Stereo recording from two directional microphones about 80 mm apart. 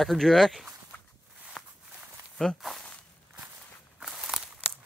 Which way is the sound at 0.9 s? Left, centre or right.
Left.